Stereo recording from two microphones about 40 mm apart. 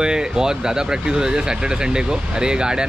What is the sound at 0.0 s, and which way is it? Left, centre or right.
A man's voice, centre.